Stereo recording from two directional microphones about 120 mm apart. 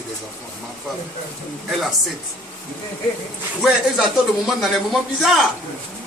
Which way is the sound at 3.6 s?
Centre (ahead or behind).